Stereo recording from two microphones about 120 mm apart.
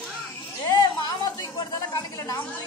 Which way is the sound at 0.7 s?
35° left (ahead or behind).